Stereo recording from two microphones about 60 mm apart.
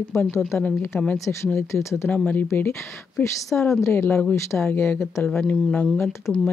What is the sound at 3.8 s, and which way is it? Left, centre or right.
Speech, left.